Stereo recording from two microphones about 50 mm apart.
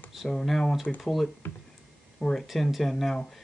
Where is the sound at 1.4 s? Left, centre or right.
Left.